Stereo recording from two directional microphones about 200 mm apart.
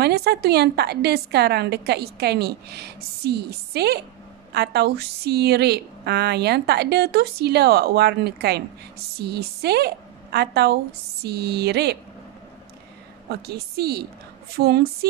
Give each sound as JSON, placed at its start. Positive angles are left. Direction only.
{"t": 0.0, "sound": "a woman's voice", "side_deg": -55}
{"t": 13.3, "sound": "a woman's voice", "side_deg": -55}